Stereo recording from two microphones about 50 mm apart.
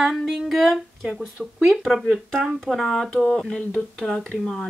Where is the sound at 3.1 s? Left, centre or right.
Left.